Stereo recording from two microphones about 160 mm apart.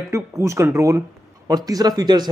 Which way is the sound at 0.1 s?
20° right (ahead or behind).